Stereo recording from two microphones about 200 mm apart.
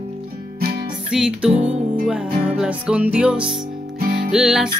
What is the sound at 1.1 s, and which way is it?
Music, 5° right (ahead or behind).